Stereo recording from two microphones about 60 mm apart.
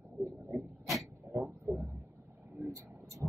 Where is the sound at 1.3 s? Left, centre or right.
Right.